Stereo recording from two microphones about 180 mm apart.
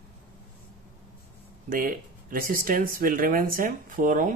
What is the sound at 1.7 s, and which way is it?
Speech, 50° right (ahead or behind).